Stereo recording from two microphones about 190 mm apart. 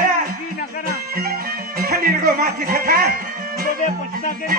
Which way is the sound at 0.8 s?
50° right (ahead or behind).